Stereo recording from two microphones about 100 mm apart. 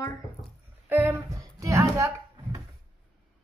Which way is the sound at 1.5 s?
30° right (ahead or behind).